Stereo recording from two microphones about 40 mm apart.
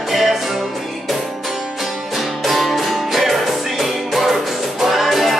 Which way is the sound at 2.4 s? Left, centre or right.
Centre.